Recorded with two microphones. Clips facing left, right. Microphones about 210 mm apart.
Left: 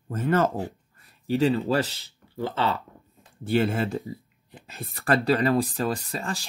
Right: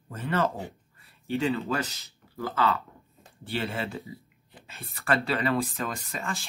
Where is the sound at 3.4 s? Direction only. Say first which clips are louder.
Left 8 dB; 45° left (ahead or behind).